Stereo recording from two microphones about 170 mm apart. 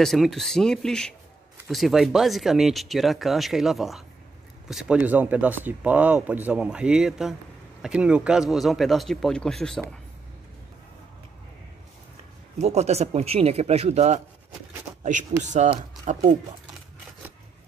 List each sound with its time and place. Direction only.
0.0 s speech: centre (ahead or behind)
12.5 s speech: 40° right (ahead or behind)
15.4 s speech: 45° right (ahead or behind)